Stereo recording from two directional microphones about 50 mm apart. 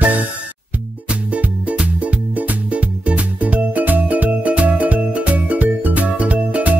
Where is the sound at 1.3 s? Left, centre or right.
Right.